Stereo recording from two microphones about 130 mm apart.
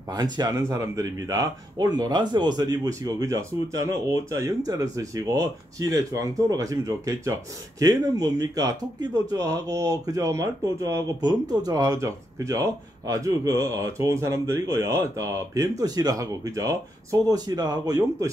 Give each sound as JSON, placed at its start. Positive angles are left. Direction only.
{"t": 0.1, "sound": "speech", "side_deg": -30}